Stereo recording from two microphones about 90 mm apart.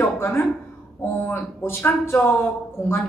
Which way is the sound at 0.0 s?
20° left (ahead or behind).